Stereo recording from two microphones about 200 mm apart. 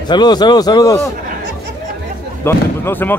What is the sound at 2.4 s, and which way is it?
Speech, 10° left (ahead or behind).